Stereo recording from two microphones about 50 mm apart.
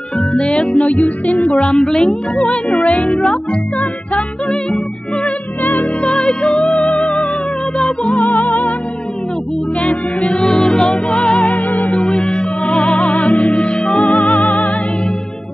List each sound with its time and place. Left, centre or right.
0.3 s music: centre
5.6 s music: left
6.0 s music: centre
10.2 s music: centre
11.4 s music: left
12.1 s music: centre
13.1 s music: left; by 14.1 s centre
14.1 s music: left